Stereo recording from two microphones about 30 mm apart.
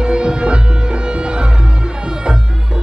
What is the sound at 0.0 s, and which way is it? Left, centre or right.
Music, right.